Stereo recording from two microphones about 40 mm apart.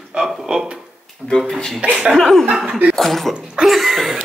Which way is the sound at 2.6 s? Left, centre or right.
Right.